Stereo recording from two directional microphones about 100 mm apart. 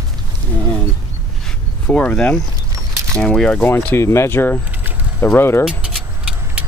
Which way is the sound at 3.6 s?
20° left (ahead or behind).